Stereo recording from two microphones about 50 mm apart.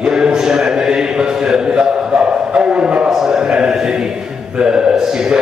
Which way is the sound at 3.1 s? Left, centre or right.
Centre.